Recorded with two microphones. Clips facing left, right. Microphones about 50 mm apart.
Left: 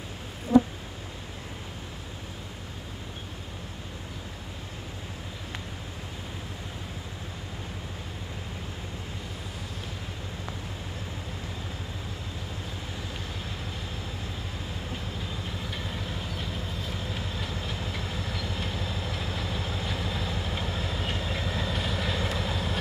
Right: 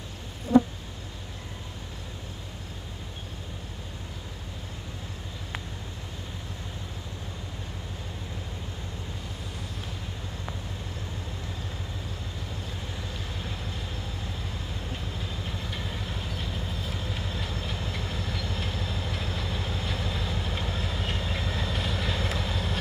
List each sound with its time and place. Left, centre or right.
15.1 s train: centre